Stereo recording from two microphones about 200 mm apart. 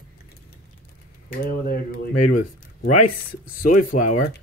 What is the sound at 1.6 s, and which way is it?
Speech, 50° left (ahead or behind).